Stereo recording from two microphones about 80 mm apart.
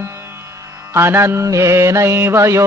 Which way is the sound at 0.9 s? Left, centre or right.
Right.